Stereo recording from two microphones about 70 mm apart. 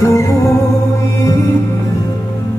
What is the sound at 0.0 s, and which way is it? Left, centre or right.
Music, left.